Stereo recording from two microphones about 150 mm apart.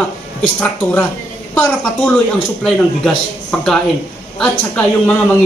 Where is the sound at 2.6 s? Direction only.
Centre (ahead or behind).